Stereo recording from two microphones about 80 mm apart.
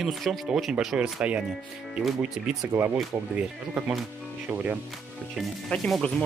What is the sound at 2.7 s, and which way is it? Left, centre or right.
Speech, right.